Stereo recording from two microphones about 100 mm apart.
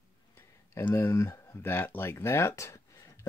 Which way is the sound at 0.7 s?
25° left (ahead or behind).